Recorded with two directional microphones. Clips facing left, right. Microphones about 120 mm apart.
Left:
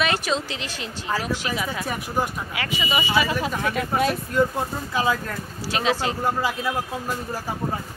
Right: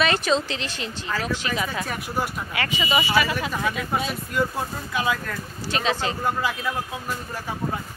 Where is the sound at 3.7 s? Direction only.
55° left (ahead or behind).